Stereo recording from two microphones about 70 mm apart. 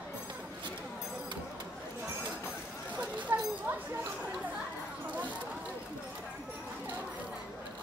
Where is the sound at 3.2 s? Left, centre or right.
Right.